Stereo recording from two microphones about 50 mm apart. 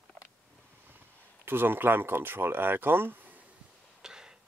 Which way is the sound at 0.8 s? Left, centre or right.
Right.